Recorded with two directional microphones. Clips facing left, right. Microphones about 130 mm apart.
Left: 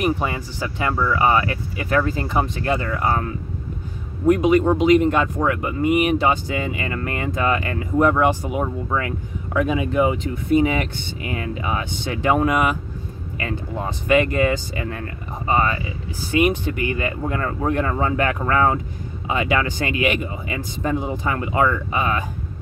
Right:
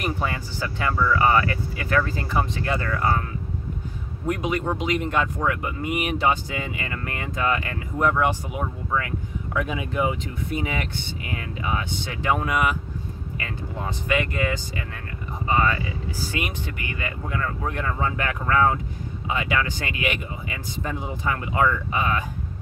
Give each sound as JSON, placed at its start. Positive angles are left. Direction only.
{"t": 0.0, "sound": "speech", "side_deg": 15}
{"t": 4.3, "sound": "speech", "side_deg": 20}
{"t": 9.5, "sound": "speech", "side_deg": 40}
{"t": 14.0, "sound": "speech", "side_deg": 30}
{"t": 19.2, "sound": "speech", "side_deg": 25}